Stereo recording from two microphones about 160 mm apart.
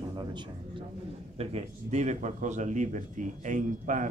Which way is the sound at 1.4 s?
45° right (ahead or behind).